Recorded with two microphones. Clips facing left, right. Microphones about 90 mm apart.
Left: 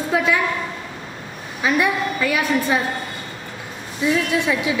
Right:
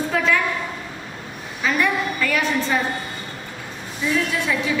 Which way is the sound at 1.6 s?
15° left (ahead or behind).